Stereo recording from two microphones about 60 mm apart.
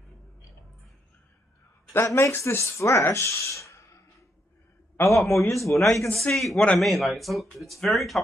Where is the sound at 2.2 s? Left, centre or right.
Left.